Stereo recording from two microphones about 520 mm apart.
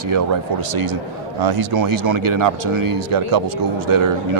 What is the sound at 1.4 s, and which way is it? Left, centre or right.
Speech, right.